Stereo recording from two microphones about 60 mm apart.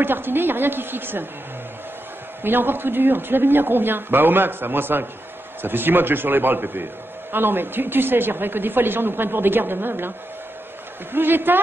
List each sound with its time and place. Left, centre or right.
0.0 s speech: right
2.4 s speech: right
11.1 s speech: right